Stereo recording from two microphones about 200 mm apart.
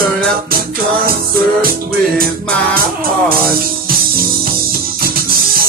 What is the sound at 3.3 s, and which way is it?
Music, 45° right (ahead or behind).